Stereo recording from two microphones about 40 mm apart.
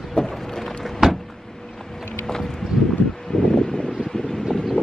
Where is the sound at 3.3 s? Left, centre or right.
Centre.